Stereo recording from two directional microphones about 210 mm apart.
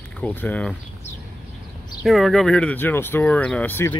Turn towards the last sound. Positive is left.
turn(degrees=10)  # may be behind; listen again after turning